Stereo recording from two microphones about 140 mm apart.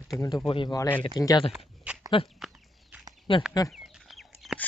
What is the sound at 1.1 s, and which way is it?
Speech, 25° left (ahead or behind).